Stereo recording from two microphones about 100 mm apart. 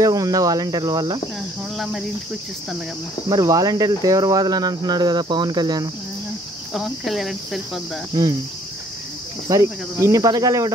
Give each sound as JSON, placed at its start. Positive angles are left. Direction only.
{"t": 0.0, "sound": "speech", "side_deg": -35}
{"t": 1.8, "sound": "cricket", "side_deg": -5}
{"t": 3.3, "sound": "speech", "side_deg": -40}
{"t": 6.7, "sound": "cricket", "side_deg": 0}
{"t": 8.1, "sound": "speech", "side_deg": -35}
{"t": 9.5, "sound": "speech", "side_deg": -35}